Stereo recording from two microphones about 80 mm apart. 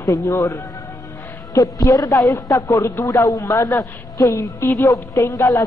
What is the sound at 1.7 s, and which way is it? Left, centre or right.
A woman's voice, left.